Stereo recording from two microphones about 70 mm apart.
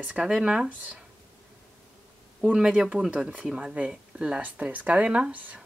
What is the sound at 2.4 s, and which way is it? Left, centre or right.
Speech, centre.